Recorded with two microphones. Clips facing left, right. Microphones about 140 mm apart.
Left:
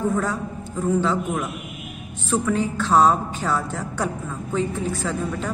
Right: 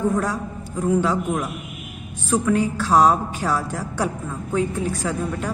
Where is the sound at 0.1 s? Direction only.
10° right (ahead or behind).